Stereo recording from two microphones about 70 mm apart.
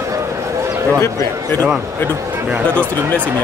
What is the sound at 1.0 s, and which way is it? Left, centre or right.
Speech, left.